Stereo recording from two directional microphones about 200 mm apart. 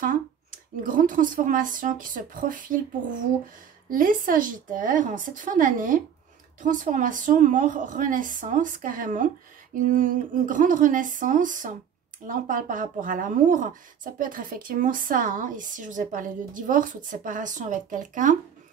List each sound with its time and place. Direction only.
0.0 s speech: 45° right (ahead or behind)